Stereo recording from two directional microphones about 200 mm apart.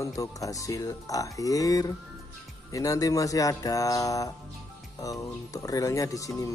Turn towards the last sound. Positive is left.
turn(degrees=15)  # may be behind; listen again after turning